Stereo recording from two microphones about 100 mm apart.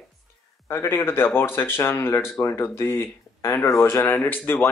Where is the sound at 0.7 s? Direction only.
25° left (ahead or behind).